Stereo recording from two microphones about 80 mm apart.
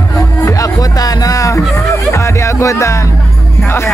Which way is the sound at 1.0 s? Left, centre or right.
Left.